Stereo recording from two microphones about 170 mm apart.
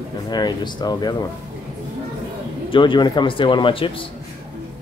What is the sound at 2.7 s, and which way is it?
Speech, 30° left (ahead or behind).